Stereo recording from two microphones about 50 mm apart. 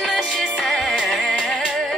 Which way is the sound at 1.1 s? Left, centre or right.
Left.